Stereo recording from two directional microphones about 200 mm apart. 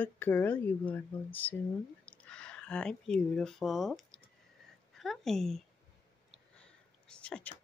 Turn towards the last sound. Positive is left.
turn(degrees=5)  # may be behind; listen again after turning